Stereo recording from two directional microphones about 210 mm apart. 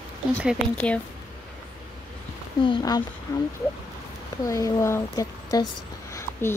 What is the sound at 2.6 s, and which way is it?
A woman's voice, 20° left (ahead or behind).